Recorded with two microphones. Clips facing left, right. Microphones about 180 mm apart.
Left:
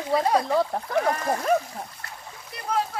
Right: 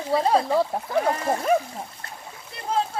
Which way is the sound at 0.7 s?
5° right (ahead or behind).